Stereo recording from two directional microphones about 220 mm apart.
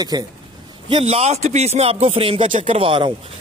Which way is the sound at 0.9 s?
30° right (ahead or behind).